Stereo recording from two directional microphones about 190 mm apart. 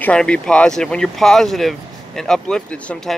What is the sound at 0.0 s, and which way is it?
Speech, 5° left (ahead or behind).